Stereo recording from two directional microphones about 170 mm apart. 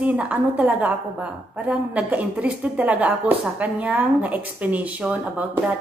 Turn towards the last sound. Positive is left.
turn(degrees=-10)  # may be behind; listen again after turning